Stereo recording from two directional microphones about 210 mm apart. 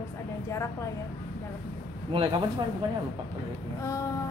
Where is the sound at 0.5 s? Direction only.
15° left (ahead or behind).